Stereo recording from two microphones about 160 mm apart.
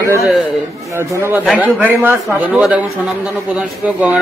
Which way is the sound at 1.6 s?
10° right (ahead or behind).